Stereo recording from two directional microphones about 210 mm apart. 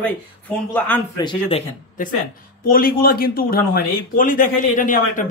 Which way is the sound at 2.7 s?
45° left (ahead or behind).